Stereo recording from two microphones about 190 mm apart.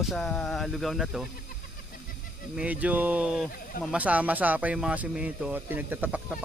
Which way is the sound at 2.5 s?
5° right (ahead or behind).